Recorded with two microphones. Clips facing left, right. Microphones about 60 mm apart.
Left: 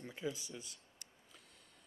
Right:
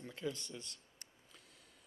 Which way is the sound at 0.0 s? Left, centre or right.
Centre.